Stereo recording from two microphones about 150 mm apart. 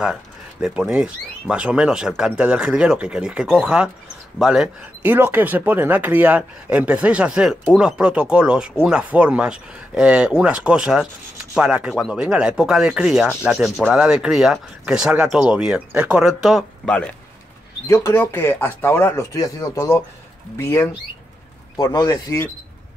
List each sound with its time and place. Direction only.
0.0 s speech: 5° right (ahead or behind); by 22.5 s 20° left (ahead or behind)